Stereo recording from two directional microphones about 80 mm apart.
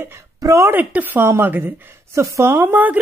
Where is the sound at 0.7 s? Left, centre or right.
Right.